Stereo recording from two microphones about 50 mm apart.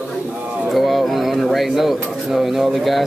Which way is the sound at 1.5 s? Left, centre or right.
Centre.